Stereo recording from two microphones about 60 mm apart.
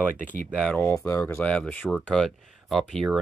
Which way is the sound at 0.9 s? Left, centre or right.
Left.